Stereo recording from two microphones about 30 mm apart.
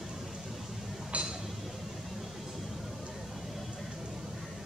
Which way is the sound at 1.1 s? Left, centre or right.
Right.